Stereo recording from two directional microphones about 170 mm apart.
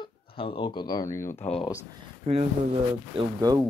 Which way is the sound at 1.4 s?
35° left (ahead or behind).